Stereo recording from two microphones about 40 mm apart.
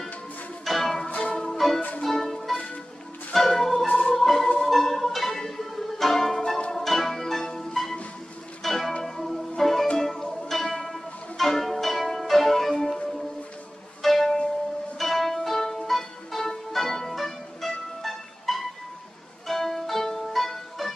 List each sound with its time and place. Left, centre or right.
0.7 s music: centre
3.8 s music: left
4.1 s music: centre
14.0 s music: centre